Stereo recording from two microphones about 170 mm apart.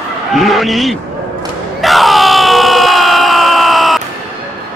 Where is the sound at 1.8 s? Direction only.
Centre (ahead or behind).